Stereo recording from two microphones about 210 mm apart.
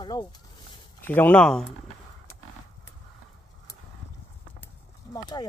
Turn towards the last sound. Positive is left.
turn(degrees=20)  # may be behind; listen again after turning